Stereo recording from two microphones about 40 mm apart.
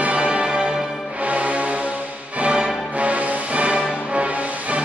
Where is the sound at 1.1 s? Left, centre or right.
Right.